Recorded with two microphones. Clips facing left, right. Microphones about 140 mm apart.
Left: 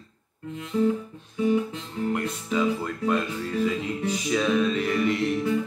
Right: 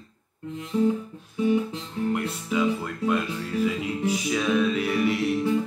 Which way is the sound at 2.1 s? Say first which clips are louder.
Left 1 dB; 5° right (ahead or behind).